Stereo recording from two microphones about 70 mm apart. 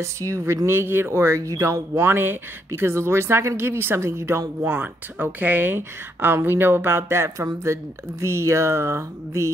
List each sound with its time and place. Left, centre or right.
0.0 s speech: right
4.6 s speech: right